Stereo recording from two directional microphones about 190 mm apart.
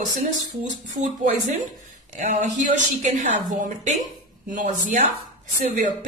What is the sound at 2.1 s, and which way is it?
A woman's voice, 40° right (ahead or behind).